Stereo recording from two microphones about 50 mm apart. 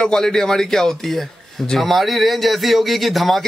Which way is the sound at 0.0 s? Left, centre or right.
Centre.